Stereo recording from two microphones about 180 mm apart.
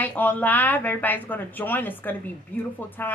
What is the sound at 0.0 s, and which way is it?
A woman's voice, 10° left (ahead or behind).